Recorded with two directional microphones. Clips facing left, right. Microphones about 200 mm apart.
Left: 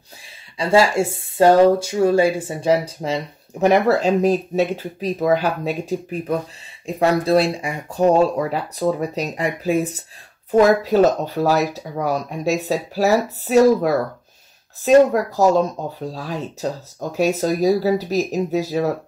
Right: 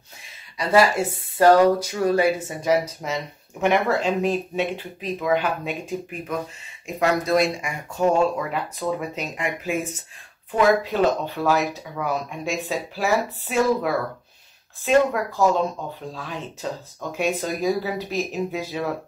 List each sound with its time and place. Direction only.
0.6 s speech: 30° left (ahead or behind)